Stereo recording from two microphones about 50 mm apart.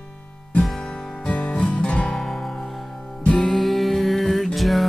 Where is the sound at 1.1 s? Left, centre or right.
Left.